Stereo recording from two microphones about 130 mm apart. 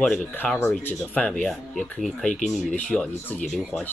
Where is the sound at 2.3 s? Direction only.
75° left (ahead or behind).